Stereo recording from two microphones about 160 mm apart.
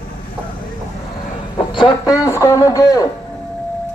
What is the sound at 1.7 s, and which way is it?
A man's voice, 25° left (ahead or behind).